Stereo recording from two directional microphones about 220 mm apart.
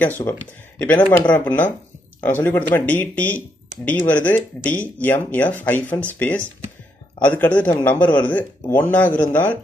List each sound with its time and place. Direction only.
0.2 s speech: 10° left (ahead or behind)